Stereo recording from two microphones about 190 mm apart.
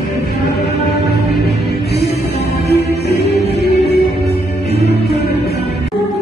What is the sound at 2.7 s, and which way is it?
Music, 60° left (ahead or behind).